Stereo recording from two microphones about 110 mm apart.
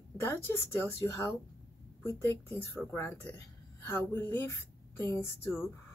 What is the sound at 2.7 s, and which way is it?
Speech, 20° left (ahead or behind).